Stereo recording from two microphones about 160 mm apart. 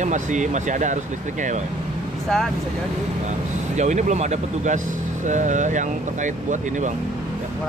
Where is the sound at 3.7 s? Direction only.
45° right (ahead or behind).